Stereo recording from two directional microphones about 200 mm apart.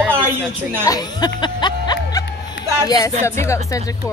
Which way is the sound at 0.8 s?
20° left (ahead or behind).